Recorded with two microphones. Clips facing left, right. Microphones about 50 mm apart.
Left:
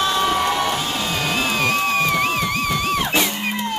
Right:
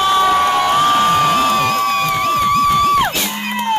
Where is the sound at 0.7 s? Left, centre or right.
Right.